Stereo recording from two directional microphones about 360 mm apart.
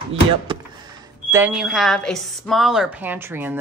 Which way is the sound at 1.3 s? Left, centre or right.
Centre.